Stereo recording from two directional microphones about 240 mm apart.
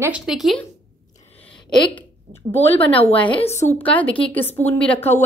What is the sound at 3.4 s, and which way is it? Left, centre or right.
Speech, left.